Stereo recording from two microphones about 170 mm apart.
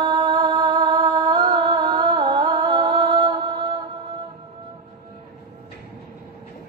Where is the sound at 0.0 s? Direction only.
30° right (ahead or behind).